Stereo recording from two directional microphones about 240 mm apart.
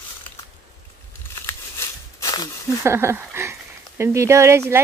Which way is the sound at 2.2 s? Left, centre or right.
Centre.